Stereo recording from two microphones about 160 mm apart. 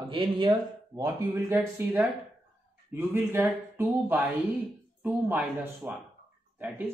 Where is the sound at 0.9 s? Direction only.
20° right (ahead or behind).